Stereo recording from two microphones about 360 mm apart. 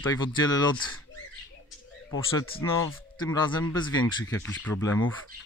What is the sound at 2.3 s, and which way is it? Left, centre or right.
Speech, centre.